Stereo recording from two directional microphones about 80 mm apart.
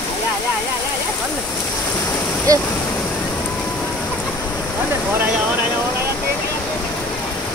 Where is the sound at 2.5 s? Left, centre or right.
Right.